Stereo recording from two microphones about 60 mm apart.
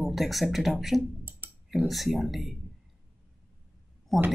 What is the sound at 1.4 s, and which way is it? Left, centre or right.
Clicking, right.